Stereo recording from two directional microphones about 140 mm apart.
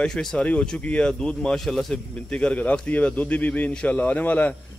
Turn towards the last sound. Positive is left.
turn(degrees=10)  # may be behind; listen again after turning